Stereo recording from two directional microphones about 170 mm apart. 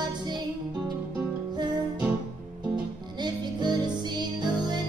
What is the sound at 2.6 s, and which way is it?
Music, 25° right (ahead or behind).